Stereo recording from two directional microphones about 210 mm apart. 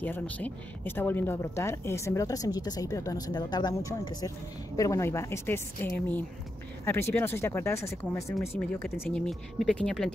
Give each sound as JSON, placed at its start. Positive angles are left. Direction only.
{"t": 0.0, "sound": "speech", "side_deg": 10}